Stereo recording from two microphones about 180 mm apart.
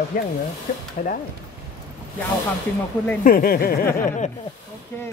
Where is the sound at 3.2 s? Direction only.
55° left (ahead or behind).